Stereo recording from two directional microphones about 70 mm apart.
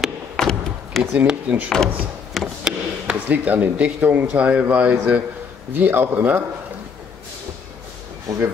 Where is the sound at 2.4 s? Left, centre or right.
Centre.